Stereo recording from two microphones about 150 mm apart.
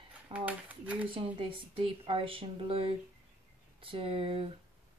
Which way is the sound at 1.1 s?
35° right (ahead or behind).